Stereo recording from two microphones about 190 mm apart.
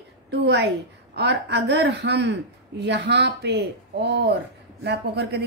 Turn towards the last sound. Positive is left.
turn(degrees=-60)  # may be behind; listen again after turning